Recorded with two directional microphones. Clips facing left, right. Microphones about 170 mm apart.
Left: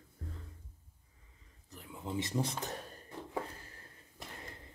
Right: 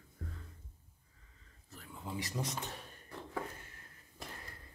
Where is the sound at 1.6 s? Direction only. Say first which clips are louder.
Left 3 dB; 20° left (ahead or behind).